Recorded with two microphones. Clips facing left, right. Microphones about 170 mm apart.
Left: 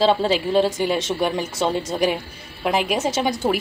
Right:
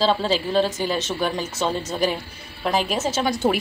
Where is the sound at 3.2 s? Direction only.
15° left (ahead or behind).